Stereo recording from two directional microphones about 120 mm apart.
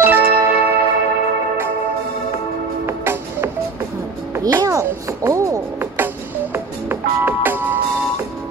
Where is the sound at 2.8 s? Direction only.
20° right (ahead or behind).